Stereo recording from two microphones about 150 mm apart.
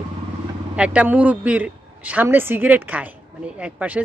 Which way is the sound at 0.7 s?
10° right (ahead or behind).